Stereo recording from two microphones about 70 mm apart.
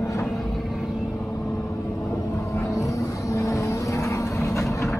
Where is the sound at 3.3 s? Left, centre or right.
Left.